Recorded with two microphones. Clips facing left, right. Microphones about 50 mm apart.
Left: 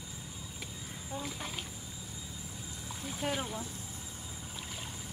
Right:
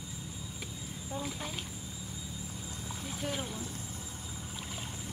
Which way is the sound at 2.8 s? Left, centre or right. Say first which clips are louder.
Even; centre.